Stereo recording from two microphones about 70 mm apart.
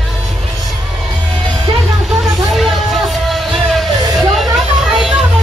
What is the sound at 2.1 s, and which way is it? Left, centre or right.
Music, centre.